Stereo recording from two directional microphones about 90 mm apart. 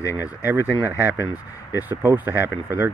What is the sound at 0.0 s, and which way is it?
Speech, 35° left (ahead or behind).